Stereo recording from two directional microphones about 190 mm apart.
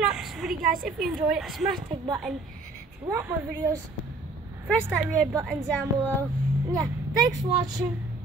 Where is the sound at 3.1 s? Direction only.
15° right (ahead or behind).